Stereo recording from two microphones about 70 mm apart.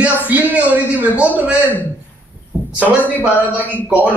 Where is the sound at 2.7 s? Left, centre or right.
Right.